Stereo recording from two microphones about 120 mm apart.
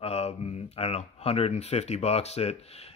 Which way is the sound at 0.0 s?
60° left (ahead or behind).